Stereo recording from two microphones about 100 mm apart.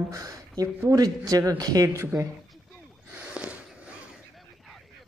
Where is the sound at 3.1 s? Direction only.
15° right (ahead or behind).